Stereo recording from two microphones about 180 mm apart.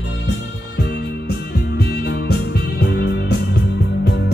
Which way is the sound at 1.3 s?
65° left (ahead or behind).